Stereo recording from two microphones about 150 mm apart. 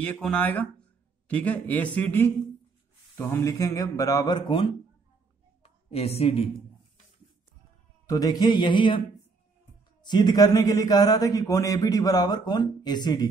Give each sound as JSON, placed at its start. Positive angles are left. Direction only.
{"t": 0.0, "sound": "speech", "side_deg": 5}
{"t": 5.6, "sound": "a sound", "side_deg": 40}
{"t": 8.1, "sound": "speech", "side_deg": 25}
{"t": 10.0, "sound": "speech", "side_deg": 30}